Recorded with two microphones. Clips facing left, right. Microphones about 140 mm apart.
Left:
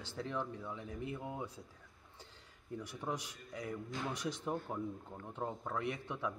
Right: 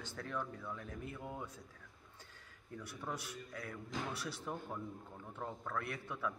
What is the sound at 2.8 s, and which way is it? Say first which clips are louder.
A man's voice: left 3 dB; 15° left (ahead or behind).